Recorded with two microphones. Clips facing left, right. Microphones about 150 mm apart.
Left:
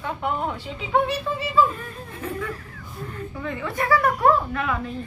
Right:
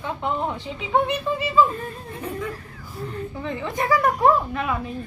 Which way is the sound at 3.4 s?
25° right (ahead or behind).